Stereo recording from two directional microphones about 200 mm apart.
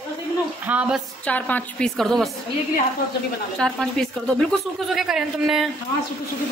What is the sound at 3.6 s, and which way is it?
Speech, 5° left (ahead or behind).